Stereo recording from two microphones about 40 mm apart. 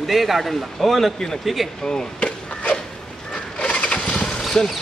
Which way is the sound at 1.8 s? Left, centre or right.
Left.